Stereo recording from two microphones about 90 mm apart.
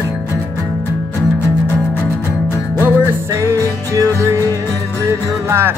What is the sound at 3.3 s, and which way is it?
Music, 35° right (ahead or behind).